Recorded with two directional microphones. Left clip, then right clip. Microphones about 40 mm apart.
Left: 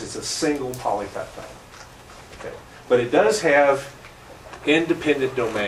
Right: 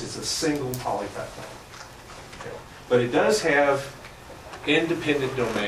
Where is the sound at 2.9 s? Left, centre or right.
Left.